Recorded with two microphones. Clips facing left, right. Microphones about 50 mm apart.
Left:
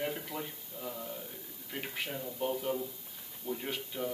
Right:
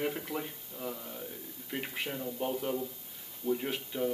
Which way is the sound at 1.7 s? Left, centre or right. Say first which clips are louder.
Right 2 dB; centre.